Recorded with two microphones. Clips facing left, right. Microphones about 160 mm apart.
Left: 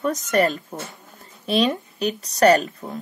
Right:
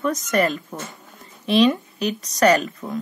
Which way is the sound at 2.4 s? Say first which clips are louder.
Left 1 dB; 40° left (ahead or behind).